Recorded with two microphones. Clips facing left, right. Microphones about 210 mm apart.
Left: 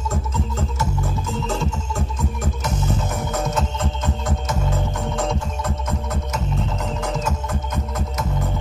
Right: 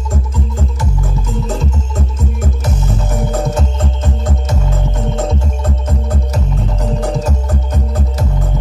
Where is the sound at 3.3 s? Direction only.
30° right (ahead or behind).